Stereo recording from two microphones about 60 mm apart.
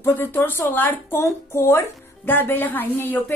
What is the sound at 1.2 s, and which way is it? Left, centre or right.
Speech, left.